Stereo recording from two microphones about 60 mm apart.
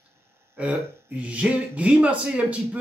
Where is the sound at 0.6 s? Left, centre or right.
Right.